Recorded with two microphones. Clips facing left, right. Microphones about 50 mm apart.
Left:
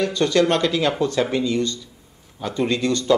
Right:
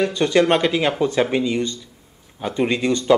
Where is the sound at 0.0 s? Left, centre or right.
Centre.